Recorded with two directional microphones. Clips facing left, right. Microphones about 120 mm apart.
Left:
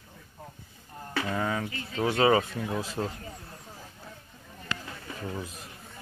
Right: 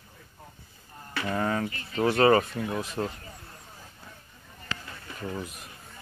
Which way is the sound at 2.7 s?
30° left (ahead or behind).